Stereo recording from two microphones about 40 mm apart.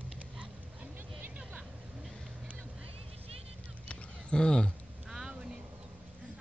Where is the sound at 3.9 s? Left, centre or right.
Left.